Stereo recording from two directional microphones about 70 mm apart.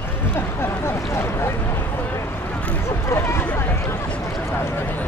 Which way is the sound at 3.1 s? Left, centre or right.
Left.